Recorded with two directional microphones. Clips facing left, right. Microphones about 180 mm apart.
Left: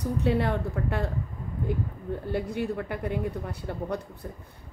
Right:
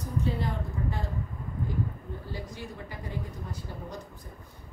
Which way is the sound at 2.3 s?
60° left (ahead or behind).